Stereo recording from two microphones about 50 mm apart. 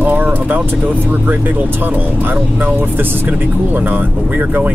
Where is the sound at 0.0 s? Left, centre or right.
Right.